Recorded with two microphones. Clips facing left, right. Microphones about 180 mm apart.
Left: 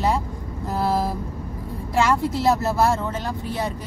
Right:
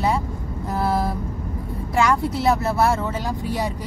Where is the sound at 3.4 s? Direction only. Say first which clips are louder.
Right 2 dB; 15° right (ahead or behind).